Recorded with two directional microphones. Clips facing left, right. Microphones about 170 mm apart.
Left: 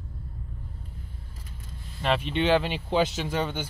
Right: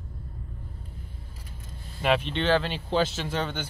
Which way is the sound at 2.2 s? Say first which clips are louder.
Left 1 dB; 10° left (ahead or behind).